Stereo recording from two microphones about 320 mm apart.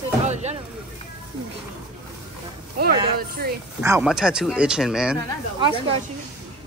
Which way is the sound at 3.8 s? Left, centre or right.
Centre.